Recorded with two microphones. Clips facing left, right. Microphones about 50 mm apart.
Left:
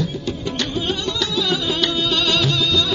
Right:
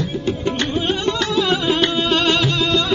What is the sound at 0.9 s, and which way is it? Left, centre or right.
Music, centre.